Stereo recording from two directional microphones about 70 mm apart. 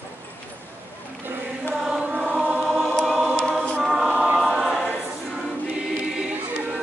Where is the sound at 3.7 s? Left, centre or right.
Centre.